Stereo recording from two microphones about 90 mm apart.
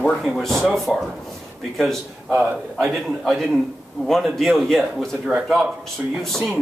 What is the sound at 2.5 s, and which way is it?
A man's voice, centre (ahead or behind).